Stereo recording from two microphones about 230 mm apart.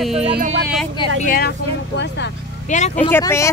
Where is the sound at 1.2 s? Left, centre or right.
Left.